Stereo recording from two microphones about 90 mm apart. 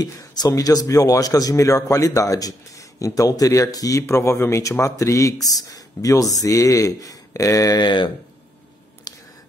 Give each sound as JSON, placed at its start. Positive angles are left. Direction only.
{"t": 0.0, "sound": "speech", "side_deg": 50}
{"t": 4.0, "sound": "speech", "side_deg": 30}
{"t": 7.8, "sound": "speech", "side_deg": 60}
{"t": 9.1, "sound": "a sound", "side_deg": 45}